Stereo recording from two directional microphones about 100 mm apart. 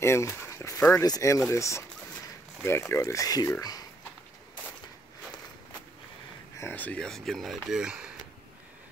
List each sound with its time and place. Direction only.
0.0 s speech: 25° left (ahead or behind)
6.6 s speech: 15° left (ahead or behind)
7.1 s speech: centre (ahead or behind)